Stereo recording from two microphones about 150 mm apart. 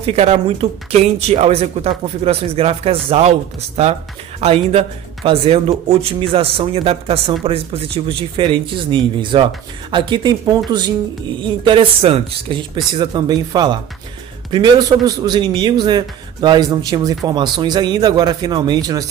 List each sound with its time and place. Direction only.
0.0 s a man's voice: 45° right (ahead or behind); by 19.0 s 25° right (ahead or behind)